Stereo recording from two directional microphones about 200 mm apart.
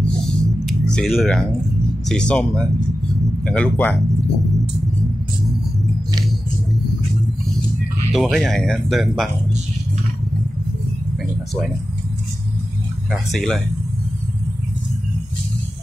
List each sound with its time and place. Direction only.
0.0 s music: centre (ahead or behind)
2.0 s speech: 5° left (ahead or behind)
8.1 s speech: centre (ahead or behind)
13.1 s speech: centre (ahead or behind)